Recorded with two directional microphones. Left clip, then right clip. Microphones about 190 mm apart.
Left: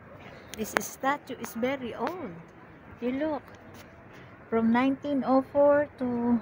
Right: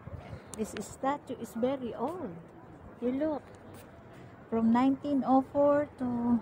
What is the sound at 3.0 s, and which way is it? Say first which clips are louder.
Speech: left 2 dB; 5° left (ahead or behind).